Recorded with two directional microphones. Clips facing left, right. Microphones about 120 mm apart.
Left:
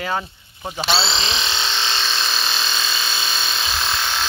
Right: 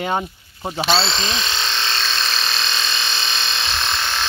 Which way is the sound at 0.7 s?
5° left (ahead or behind).